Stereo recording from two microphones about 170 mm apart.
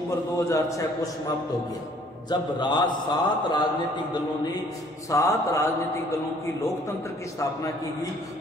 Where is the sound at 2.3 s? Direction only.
25° left (ahead or behind).